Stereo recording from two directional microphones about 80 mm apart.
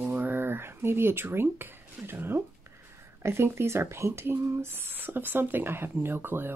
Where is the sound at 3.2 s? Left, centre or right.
Right.